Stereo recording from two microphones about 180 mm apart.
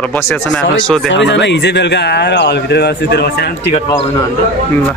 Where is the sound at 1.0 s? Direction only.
85° left; by 3.5 s 65° left (ahead or behind).